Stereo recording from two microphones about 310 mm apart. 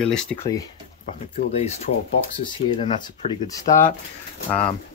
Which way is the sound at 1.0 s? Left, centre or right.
Left.